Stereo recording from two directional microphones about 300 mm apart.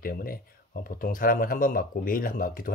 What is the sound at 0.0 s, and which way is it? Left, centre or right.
Speech, left.